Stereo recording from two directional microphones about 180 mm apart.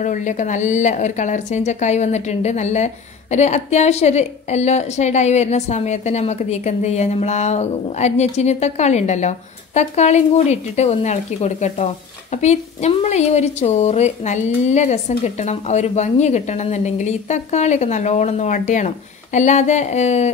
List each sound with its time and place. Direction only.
0.0 s speech: 45° left (ahead or behind)